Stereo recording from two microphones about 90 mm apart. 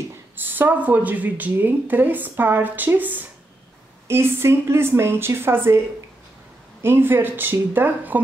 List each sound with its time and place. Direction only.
0.5 s speech: 20° right (ahead or behind)
6.8 s speech: 25° right (ahead or behind)